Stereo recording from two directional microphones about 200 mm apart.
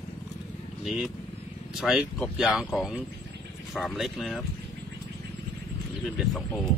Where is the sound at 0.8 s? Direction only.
Centre (ahead or behind).